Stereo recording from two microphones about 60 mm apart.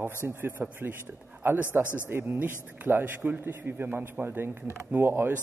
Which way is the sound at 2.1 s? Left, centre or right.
Right.